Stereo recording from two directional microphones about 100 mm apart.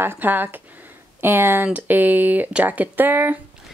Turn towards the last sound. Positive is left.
turn(degrees=-20)  # may be behind; listen again after turning